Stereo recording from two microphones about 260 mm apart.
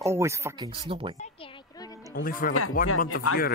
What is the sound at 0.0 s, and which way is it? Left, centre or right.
Speech, centre.